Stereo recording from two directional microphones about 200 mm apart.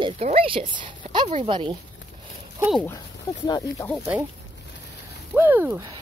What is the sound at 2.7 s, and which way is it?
Speech, 15° left (ahead or behind).